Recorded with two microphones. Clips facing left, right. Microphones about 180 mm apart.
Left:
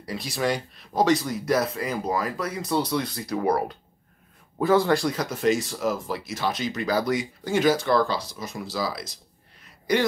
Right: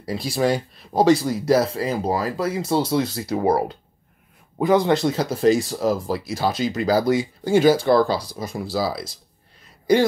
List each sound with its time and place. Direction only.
0.0 s speech: 30° right (ahead or behind)